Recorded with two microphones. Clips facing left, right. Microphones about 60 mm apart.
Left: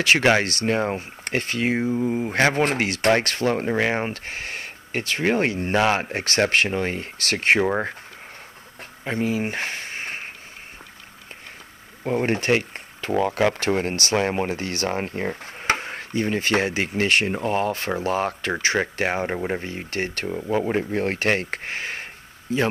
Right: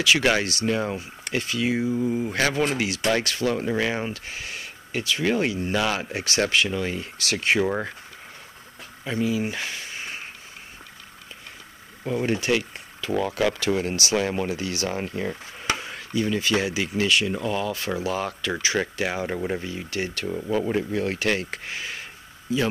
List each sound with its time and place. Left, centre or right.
0.4 s speech: left
9.0 s a sound: left
12.0 s speech: left
20.2 s speech: left